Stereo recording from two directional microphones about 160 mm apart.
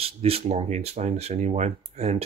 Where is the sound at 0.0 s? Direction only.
40° right (ahead or behind).